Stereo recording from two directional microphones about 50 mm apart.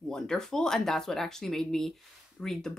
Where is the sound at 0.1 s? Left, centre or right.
Centre.